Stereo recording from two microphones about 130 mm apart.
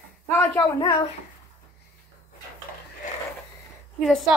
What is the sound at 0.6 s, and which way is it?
Speech, 30° left (ahead or behind).